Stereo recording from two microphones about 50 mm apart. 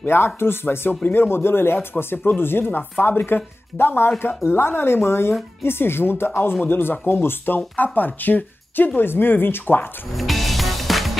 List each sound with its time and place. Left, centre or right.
0.0 s speech: left
10.1 s music: centre